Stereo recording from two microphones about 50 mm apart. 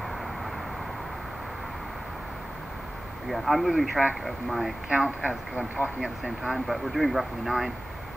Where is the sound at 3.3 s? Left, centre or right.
Centre.